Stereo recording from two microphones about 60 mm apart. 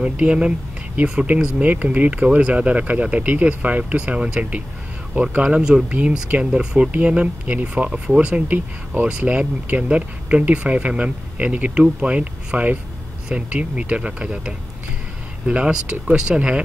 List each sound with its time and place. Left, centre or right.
0.0 s speech: centre
5.9 s speech: right